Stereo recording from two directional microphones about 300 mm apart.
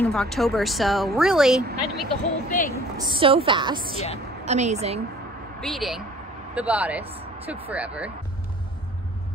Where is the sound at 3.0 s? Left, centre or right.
Centre.